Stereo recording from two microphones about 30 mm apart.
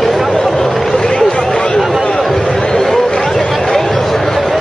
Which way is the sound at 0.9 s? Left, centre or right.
Left.